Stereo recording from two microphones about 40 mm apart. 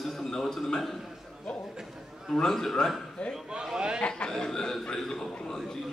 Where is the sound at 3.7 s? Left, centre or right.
Centre.